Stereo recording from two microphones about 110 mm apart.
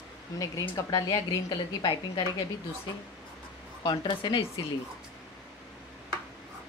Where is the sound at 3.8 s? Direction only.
45° left (ahead or behind).